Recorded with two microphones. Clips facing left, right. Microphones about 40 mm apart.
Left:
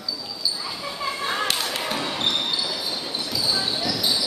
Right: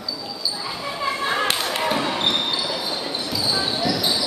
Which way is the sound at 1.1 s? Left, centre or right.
Centre.